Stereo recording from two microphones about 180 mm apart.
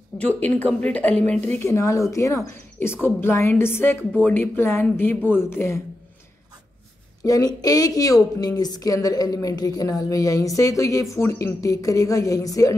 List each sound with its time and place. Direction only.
0.2 s a woman's voice: 10° left (ahead or behind)
7.2 s a woman's voice: 20° left (ahead or behind)